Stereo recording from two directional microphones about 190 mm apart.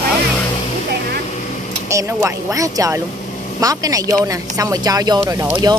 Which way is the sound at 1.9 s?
15° right (ahead or behind).